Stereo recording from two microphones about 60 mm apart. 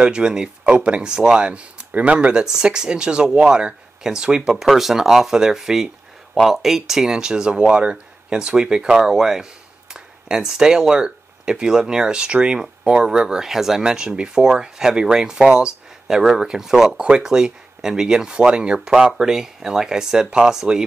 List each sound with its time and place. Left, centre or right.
0.0 s speech: centre